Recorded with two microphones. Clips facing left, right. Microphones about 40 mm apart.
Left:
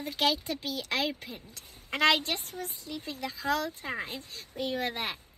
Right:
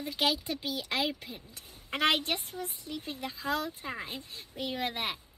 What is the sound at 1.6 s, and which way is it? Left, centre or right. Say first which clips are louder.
A woman's voice: left 3 dB; left.